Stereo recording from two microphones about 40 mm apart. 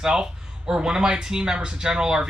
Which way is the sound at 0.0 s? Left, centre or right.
Centre.